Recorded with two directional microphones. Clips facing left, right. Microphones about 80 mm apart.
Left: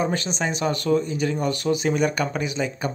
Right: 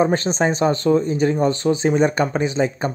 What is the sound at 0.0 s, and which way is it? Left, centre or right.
Speech, right.